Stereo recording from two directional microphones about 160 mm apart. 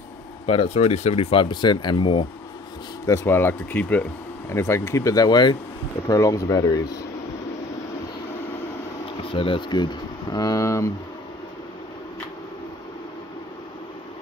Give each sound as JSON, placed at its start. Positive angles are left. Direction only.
{"t": 0.5, "sound": "speech", "side_deg": 35}
{"t": 3.1, "sound": "speech", "side_deg": 15}
{"t": 9.2, "sound": "speech", "side_deg": 35}